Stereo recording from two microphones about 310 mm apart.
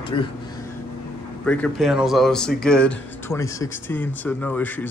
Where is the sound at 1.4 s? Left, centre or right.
Centre.